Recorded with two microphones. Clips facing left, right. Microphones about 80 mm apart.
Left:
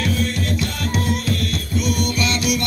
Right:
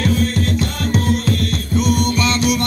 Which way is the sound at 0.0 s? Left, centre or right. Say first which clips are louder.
Right 4 dB; right.